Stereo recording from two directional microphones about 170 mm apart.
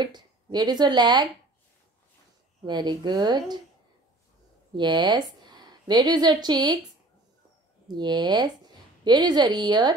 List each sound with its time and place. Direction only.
0.0 s speech: 25° right (ahead or behind)
2.6 s speech: 25° right (ahead or behind)
4.7 s a woman's voice: 25° right (ahead or behind)
7.9 s speech: 25° right (ahead or behind)